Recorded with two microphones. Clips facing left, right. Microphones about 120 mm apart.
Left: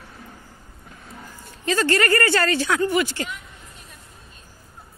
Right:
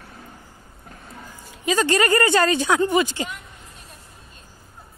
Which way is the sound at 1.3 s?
15° right (ahead or behind).